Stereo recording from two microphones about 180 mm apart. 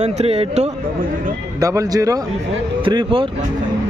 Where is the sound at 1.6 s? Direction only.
20° right (ahead or behind).